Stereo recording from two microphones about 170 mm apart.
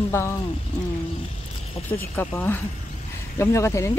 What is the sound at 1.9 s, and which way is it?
Speech, 10° left (ahead or behind).